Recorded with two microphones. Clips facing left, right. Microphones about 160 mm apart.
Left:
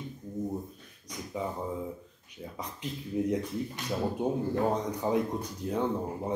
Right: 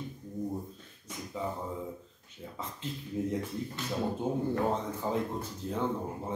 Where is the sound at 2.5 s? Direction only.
15° left (ahead or behind).